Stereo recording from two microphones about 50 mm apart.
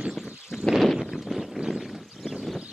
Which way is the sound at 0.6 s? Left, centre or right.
Centre.